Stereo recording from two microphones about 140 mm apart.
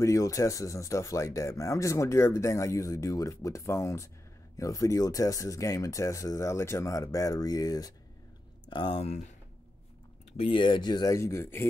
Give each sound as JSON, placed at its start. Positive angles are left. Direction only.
{"t": 0.0, "sound": "speech", "side_deg": 20}
{"t": 8.6, "sound": "speech", "side_deg": 40}
{"t": 10.3, "sound": "speech", "side_deg": 40}